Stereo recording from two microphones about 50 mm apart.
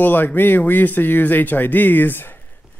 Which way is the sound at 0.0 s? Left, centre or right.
Left.